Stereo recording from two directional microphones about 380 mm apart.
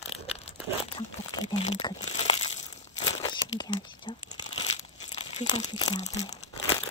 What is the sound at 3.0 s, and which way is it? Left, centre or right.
Crumpling, centre.